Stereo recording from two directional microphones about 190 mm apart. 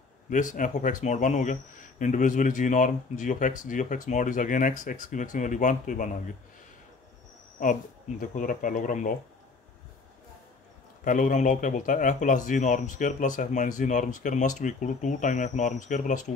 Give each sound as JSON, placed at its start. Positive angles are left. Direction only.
{"t": 0.3, "sound": "speech", "side_deg": 45}
{"t": 8.2, "sound": "speech", "side_deg": 45}
{"t": 11.1, "sound": "speech", "side_deg": 45}